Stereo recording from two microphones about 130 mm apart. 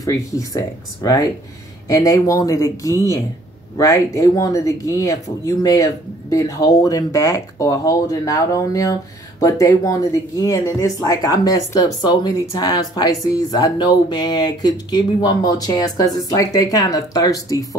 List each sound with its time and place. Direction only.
0.0 s speech: 25° left (ahead or behind)